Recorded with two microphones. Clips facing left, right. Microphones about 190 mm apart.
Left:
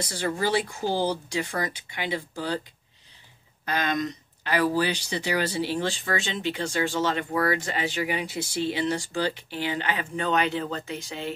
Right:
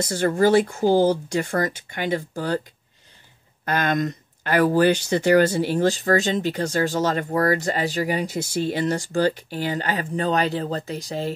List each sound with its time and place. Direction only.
0.0 s speech: 50° right (ahead or behind)
3.6 s speech: 50° right (ahead or behind)